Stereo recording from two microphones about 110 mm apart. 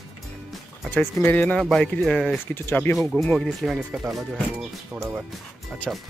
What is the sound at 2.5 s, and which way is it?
Speech, 20° left (ahead or behind).